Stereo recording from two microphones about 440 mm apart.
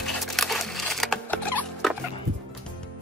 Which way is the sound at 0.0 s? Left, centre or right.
Centre.